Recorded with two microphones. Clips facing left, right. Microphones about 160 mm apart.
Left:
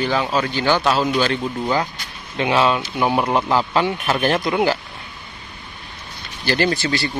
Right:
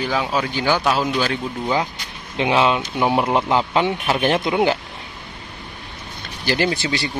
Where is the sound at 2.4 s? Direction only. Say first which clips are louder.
Even; 20° right (ahead or behind).